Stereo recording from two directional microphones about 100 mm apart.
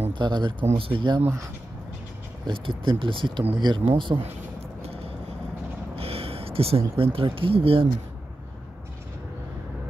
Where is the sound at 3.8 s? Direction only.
60° right (ahead or behind).